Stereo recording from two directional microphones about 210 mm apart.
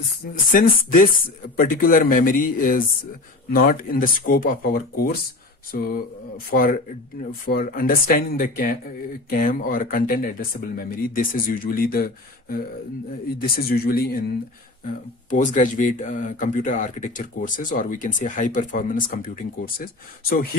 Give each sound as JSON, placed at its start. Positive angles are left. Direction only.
{"t": 0.5, "sound": "speech", "side_deg": 40}